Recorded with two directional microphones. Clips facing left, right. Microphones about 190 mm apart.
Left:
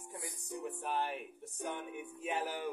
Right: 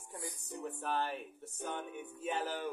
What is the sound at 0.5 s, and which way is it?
Speech, 15° left (ahead or behind).